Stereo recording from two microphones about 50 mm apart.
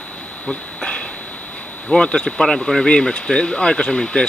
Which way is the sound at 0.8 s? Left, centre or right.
Centre.